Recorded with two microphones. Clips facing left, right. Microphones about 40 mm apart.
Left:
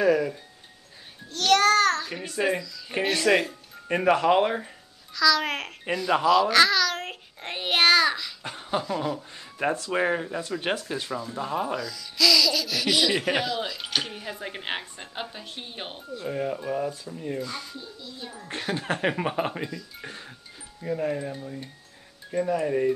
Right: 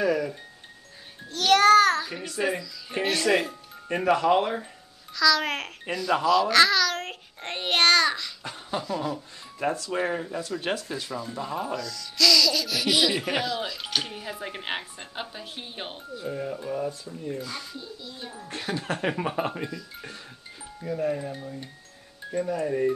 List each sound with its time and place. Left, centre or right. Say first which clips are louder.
0.0 s speech: left 3 dB; centre
1.3 s child singing: right 3 dB; centre
2.3 s a woman's voice: left 2 dB; centre
3.9 s speech: left 1 dB; left
5.1 s a child's voice: even; centre
8.5 s speech: left 3 dB; centre
9.8 s a woman's voice: left 3 dB; left; by 16.3 s centre
16.3 s speech: left 3 dB; left
17.4 s a woman's voice: left 2 dB; centre
18.8 s speech: left 2 dB; left
20.0 s music: left 1 dB; centre
20.8 s speech: even; centre
22.3 s speech: left 2 dB; left
22.7 s speech: left 1 dB; centre